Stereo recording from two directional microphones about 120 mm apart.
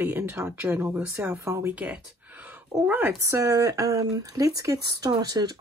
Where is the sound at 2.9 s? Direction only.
15° right (ahead or behind).